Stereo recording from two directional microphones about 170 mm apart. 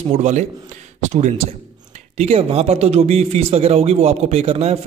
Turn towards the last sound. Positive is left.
turn(degrees=-35)  # may be behind; listen again after turning